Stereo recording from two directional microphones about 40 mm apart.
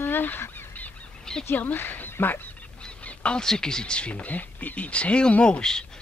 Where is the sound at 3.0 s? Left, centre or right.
Left.